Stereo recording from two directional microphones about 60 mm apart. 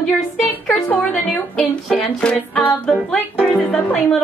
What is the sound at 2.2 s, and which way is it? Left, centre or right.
Music, centre.